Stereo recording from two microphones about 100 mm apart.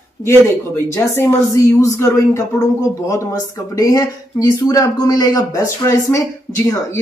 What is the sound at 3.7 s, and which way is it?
Speech, 40° left (ahead or behind).